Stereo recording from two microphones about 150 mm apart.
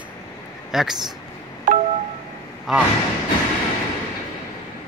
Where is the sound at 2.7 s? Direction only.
5° right (ahead or behind).